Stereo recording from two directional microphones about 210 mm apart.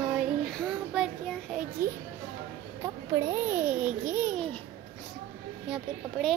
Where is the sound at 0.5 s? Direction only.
Centre (ahead or behind).